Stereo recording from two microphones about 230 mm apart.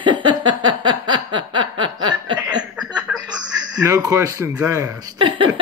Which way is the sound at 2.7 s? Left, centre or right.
Centre.